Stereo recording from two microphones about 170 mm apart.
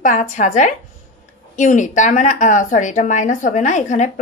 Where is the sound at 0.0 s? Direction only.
50° left (ahead or behind).